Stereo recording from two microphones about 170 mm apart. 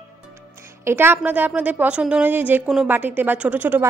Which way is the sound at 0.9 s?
15° right (ahead or behind).